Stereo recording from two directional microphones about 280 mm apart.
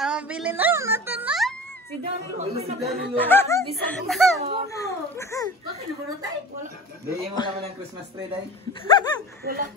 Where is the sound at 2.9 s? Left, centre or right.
Centre.